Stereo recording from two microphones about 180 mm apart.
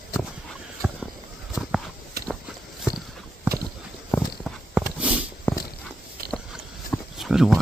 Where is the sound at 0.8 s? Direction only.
5° right (ahead or behind).